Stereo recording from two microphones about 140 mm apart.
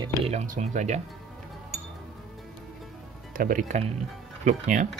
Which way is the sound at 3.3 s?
75° right (ahead or behind).